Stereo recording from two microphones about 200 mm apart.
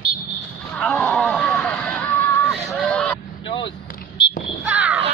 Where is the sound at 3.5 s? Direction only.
25° left (ahead or behind).